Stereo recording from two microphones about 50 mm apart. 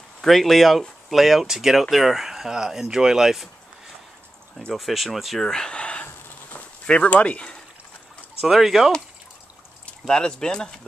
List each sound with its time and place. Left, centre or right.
0.2 s speech: centre
4.7 s speech: centre
5.4 s speech: centre
8.4 s speech: centre
10.0 s speech: centre